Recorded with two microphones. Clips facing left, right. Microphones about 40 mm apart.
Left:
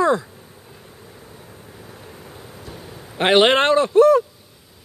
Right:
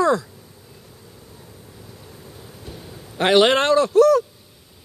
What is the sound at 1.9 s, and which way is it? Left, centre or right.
Vehicle, left.